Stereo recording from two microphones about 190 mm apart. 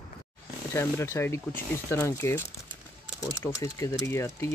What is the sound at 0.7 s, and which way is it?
Speech, 15° left (ahead or behind).